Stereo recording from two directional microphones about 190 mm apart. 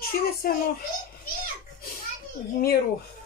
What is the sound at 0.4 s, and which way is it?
Speech, 50° left (ahead or behind).